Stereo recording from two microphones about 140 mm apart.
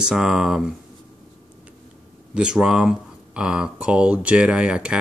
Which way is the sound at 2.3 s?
5° right (ahead or behind).